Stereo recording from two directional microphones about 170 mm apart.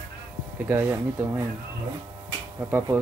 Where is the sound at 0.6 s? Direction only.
10° right (ahead or behind).